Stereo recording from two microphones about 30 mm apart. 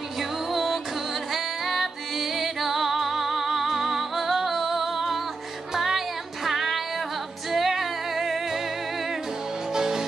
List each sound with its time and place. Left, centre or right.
0.5 s music: centre
9.8 s music: centre